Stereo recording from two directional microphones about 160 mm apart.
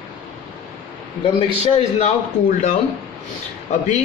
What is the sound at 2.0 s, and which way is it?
Speech, 45° left (ahead or behind).